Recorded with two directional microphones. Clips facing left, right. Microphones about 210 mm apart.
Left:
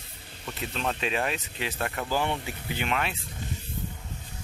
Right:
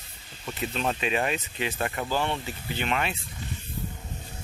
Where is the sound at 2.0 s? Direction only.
10° left (ahead or behind).